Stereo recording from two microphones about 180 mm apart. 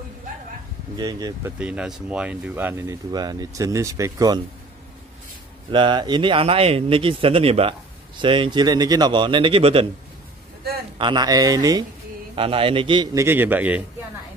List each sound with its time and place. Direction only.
0.9 s a man's voice: 20° right (ahead or behind)
1.6 s speech: 5° right (ahead or behind)
5.7 s a man's voice: 25° right (ahead or behind)
11.0 s a man's voice: 25° right (ahead or behind); by 13.8 s 10° right (ahead or behind)